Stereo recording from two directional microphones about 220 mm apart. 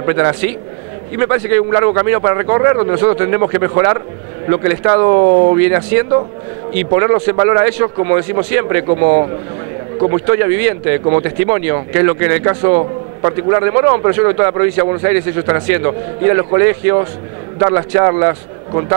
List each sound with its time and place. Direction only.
0.0 s speech: 20° right (ahead or behind)
5.6 s speech: 15° right (ahead or behind)
8.8 s speech: 30° right (ahead or behind)